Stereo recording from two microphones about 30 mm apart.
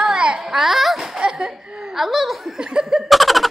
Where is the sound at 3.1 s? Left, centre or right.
Centre.